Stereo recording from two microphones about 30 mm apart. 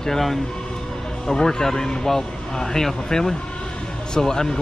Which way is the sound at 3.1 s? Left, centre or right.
Centre.